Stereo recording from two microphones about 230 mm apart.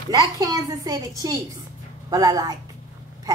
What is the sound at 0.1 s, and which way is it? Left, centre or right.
Speech, centre.